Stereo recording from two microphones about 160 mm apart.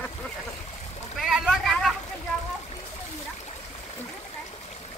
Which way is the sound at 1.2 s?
Centre (ahead or behind).